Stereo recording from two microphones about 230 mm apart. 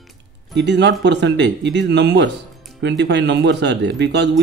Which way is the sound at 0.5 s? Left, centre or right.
Right.